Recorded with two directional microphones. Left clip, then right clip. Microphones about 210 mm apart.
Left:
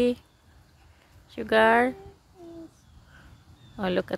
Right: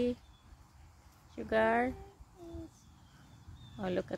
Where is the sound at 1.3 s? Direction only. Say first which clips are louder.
Left 10 dB; 30° left (ahead or behind).